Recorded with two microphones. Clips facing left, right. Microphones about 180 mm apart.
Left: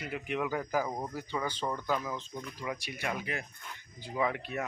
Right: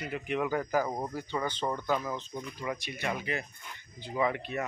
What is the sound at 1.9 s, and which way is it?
Speech, 5° right (ahead or behind).